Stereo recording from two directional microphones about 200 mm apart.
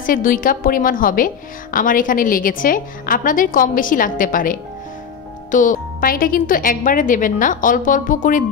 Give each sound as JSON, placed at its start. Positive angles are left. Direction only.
{"t": 0.0, "sound": "a woman's voice", "side_deg": 45}